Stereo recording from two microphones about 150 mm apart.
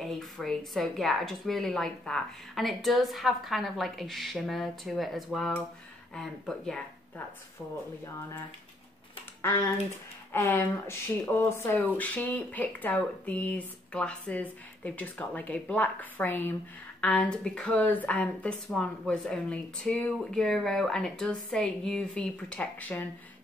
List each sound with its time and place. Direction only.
0.0 s speech: centre (ahead or behind)
10.3 s speech: 15° left (ahead or behind)